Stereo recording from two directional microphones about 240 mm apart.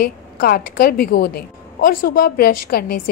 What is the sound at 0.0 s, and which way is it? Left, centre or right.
A woman's voice, left.